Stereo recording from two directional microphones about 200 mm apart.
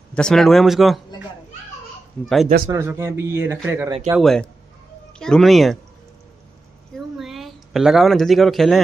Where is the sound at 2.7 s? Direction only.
15° right (ahead or behind).